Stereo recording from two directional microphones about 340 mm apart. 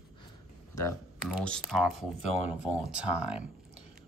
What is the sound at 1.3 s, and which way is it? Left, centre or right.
Typing, centre.